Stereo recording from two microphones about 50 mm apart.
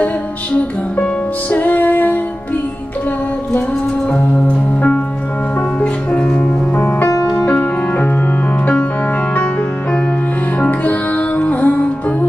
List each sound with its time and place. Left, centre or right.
0.9 s music: left
5.8 s music: left
6.8 s music: left
7.3 s music: left
10.6 s music: left